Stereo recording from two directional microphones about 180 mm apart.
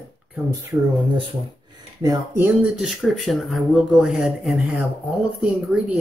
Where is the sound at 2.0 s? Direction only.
25° right (ahead or behind).